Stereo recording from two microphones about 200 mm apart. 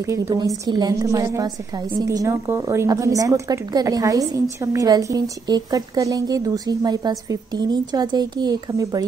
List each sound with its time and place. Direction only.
0.0 s a woman's voice: 15° right (ahead or behind)